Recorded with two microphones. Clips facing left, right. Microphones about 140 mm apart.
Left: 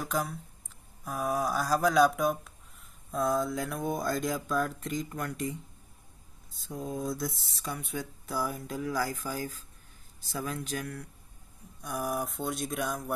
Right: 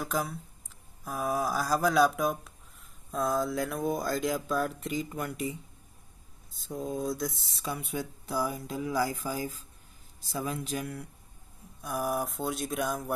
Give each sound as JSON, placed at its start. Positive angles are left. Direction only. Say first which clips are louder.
{"t": 0.0, "sound": "speech", "louder": "even", "side_deg": 0}
{"t": 10.3, "sound": "speech", "louder": "right 1 dB", "side_deg": -5}